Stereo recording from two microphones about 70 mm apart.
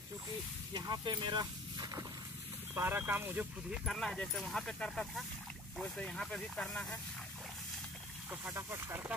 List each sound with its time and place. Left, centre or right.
0.7 s speech: right
2.7 s speech: right
3.8 s speech: centre
8.5 s speech: right